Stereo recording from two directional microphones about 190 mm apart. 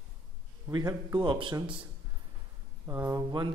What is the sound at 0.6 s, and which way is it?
A man's voice, 20° right (ahead or behind).